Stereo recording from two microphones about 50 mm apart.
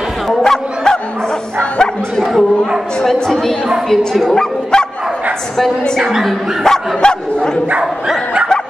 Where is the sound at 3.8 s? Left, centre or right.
Centre.